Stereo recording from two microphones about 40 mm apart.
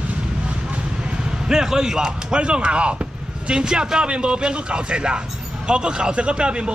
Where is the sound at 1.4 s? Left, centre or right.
Centre.